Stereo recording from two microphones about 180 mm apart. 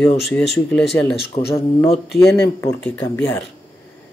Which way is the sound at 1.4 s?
30° left (ahead or behind).